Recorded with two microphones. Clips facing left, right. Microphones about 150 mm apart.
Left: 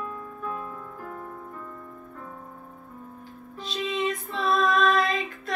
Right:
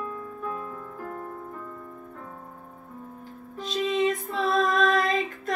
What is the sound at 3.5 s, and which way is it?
Music, 45° right (ahead or behind).